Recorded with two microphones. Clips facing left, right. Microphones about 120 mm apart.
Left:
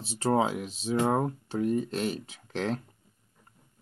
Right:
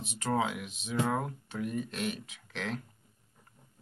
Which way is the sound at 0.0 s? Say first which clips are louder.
Left 5 dB; 30° left (ahead or behind).